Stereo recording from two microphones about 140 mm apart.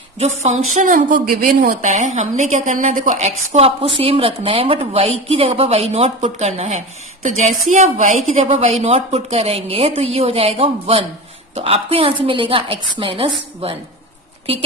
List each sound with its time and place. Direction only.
0.2 s a woman's voice: 55° right (ahead or behind)